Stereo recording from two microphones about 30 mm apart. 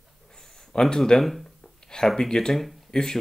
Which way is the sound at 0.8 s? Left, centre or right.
Centre.